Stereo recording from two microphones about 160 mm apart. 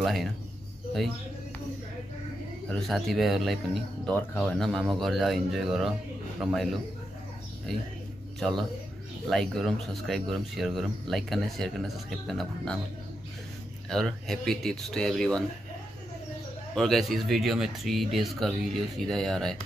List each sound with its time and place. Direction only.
0.0 s speech: centre (ahead or behind)
2.7 s speech: centre (ahead or behind)
13.8 s speech: centre (ahead or behind)
16.7 s speech: centre (ahead or behind)